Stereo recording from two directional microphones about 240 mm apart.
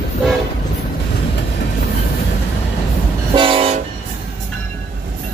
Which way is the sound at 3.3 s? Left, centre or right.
Right.